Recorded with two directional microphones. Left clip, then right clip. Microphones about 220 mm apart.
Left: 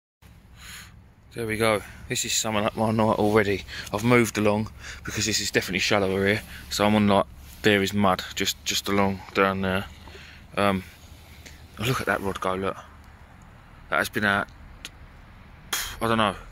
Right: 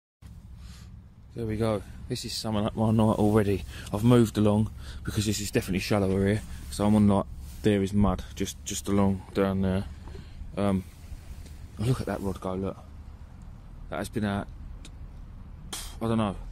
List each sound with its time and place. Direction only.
1.3 s speech: 5° right (ahead or behind)
11.8 s speech: 10° right (ahead or behind)
13.8 s speech: 5° right (ahead or behind)
15.7 s a sound: 10° right (ahead or behind)